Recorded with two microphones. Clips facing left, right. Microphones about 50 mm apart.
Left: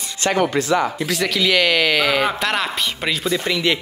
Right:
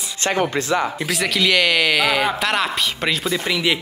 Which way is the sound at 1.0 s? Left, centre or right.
Centre.